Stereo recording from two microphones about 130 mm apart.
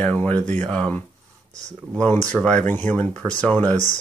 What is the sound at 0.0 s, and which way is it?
Speech, 10° left (ahead or behind).